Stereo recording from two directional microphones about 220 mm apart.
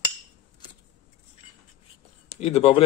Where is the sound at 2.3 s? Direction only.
30° left (ahead or behind).